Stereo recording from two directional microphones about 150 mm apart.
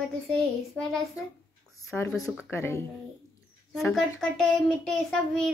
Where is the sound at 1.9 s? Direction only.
15° left (ahead or behind).